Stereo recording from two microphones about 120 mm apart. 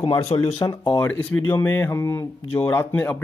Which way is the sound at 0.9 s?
20° left (ahead or behind).